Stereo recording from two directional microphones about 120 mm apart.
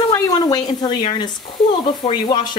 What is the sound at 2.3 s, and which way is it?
Speech, 35° left (ahead or behind).